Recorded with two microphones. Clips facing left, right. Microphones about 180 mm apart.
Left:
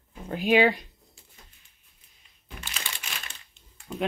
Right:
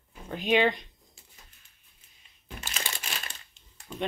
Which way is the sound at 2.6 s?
40° right (ahead or behind).